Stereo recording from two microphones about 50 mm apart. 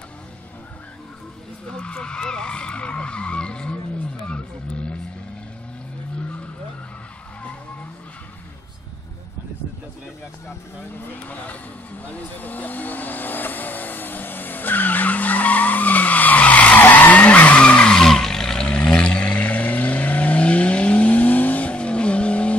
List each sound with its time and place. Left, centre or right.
1.7 s speech: centre
11.1 s speech: left
12.0 s vehicle: left
17.6 s skidding: left
17.9 s vehicle: centre